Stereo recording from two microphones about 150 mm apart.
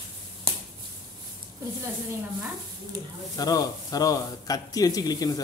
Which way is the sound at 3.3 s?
25° left (ahead or behind).